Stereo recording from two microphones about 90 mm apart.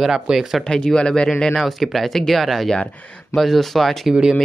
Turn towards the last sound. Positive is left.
turn(degrees=-10)  # may be behind; listen again after turning